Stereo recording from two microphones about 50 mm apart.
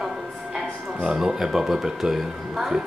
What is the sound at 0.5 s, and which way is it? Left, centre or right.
Speech, centre.